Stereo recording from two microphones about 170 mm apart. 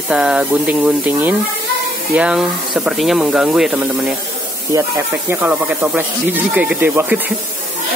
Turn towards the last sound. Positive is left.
turn(degrees=-10)  # may be behind; listen again after turning